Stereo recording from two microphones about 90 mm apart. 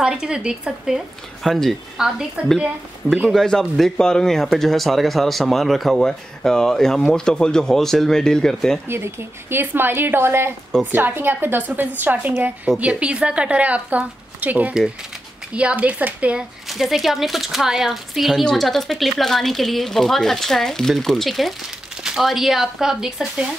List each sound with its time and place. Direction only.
0.0 s speech: 10° right (ahead or behind)
3.3 s speech: 5° left (ahead or behind)
8.8 s a woman's voice: 25° right (ahead or behind)
16.6 s speech: centre (ahead or behind)